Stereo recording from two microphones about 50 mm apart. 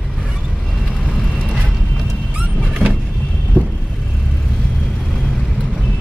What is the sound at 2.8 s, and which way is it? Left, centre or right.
Vehicle, left.